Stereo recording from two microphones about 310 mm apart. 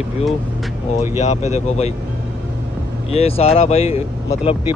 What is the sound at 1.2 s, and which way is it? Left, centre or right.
Speech, left.